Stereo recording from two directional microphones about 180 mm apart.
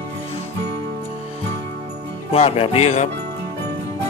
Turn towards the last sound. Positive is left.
turn(degrees=35)  # may be behind; listen again after turning